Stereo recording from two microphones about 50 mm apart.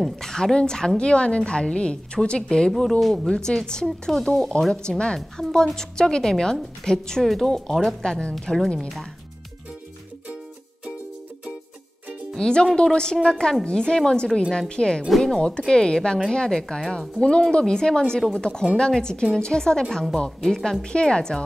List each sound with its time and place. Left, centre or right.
0.2 s a woman's voice: centre
2.7 s a woman's voice: centre
8.2 s a woman's voice: left
8.7 s speech: centre
12.4 s a woman's voice: centre
15.0 s speech: centre
15.3 s a woman's voice: centre